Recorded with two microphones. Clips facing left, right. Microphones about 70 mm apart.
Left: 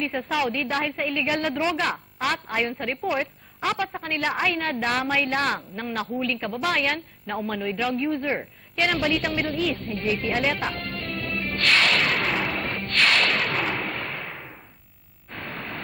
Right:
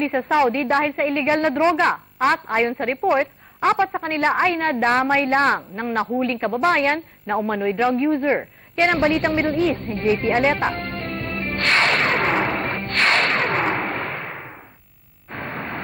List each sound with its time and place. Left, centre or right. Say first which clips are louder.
0.0 s a woman's voice: right 6 dB; right
0.3 s a woman's voice: right 8 dB; right
10.8 s music: right 4 dB; right
15.3 s a sound: right 5 dB; right